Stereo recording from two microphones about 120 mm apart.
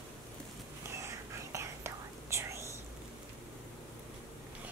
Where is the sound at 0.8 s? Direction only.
25° right (ahead or behind).